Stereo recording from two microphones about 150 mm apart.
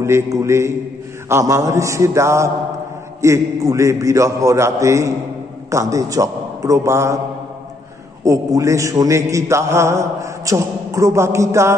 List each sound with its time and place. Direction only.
0.0 s a man's voice: 20° right (ahead or behind)
8.2 s a man's voice: 20° right (ahead or behind)